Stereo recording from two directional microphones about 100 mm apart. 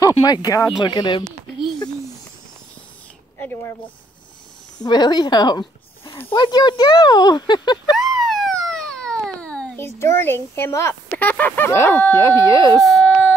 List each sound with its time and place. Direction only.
0.0 s speech: 40° left (ahead or behind)
3.3 s a sound: 20° left (ahead or behind)
4.8 s speech: 45° left (ahead or behind)
7.9 s a sound: centre (ahead or behind)
8.6 s baby cry: 5° left (ahead or behind)
9.9 s speech: 25° left (ahead or behind)
11.1 s speech: 15° left (ahead or behind); by 12.8 s 35° left (ahead or behind)
12.8 s baby cry: centre (ahead or behind)